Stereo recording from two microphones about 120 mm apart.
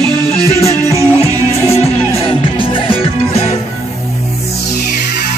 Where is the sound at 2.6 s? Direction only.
50° left (ahead or behind).